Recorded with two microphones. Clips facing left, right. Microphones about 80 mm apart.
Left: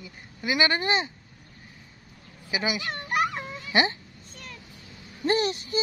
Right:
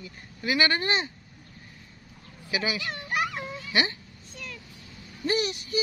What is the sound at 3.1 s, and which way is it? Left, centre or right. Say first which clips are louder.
Music: left 3 dB; left.